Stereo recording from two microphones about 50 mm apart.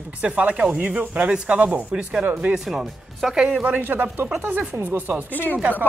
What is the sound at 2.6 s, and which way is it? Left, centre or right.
Speech, centre.